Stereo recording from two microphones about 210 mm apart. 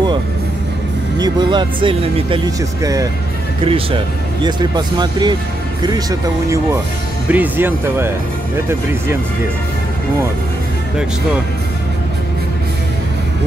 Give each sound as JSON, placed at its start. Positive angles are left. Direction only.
{"t": 1.1, "sound": "speech", "side_deg": -20}